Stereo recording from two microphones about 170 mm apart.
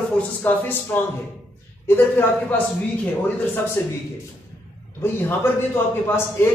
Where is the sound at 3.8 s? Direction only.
10° left (ahead or behind).